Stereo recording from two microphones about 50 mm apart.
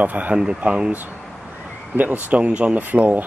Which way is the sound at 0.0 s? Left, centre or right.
Right.